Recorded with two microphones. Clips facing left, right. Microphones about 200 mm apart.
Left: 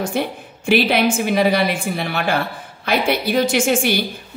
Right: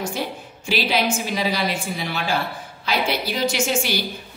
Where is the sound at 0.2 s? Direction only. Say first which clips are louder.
Left 5 dB; 60° left (ahead or behind).